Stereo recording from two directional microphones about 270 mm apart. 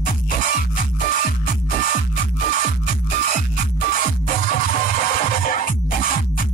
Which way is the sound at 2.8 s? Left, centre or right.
Left.